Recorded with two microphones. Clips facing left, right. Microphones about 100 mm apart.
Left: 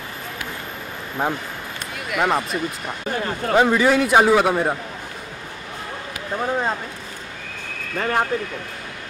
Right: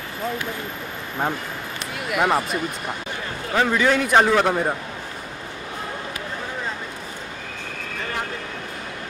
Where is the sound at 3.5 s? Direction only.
15° left (ahead or behind).